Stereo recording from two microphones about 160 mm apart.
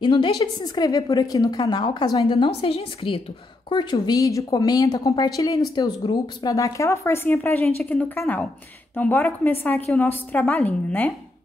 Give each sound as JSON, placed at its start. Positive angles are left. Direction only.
{"t": 0.0, "sound": "a woman's voice", "side_deg": 25}